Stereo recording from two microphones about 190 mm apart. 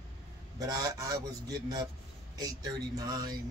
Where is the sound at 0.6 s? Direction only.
20° right (ahead or behind).